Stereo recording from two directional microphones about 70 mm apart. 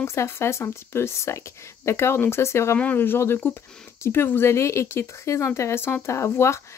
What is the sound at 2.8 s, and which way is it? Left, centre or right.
Speech, left.